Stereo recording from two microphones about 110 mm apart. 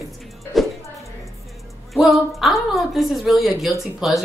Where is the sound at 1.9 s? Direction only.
Centre (ahead or behind).